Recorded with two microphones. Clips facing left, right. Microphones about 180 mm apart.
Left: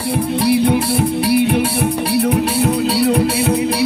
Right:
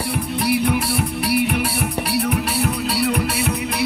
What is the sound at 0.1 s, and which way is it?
Music, 30° left (ahead or behind).